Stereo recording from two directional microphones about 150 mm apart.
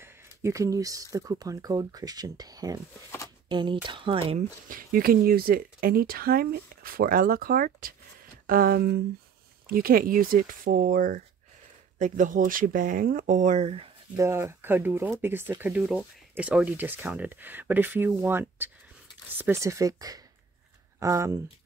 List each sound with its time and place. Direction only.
0.0 s speech: 20° right (ahead or behind); by 4.4 s 35° right (ahead or behind)
4.4 s speech: 65° right (ahead or behind); by 9.0 s 90° right
9.7 s speech: 75° right (ahead or behind); by 13.8 s 45° right (ahead or behind)
14.1 s speech: 20° right (ahead or behind)